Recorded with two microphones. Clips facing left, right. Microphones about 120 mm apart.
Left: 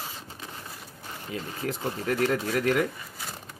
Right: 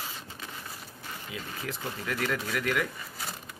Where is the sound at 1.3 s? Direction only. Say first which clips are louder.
Left 6 dB; 40° left (ahead or behind).